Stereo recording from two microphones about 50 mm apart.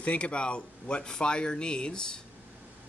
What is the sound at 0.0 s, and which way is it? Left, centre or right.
Speech, left.